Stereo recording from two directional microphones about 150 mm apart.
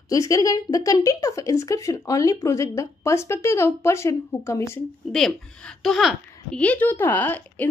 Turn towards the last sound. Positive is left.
turn(degrees=10)  # may be behind; listen again after turning